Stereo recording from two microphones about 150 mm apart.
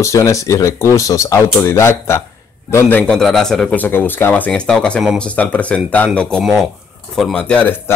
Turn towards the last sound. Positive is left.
turn(degrees=10)  # may be behind; listen again after turning